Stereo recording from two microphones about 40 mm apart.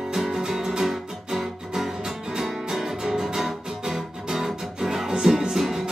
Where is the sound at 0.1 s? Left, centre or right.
Centre.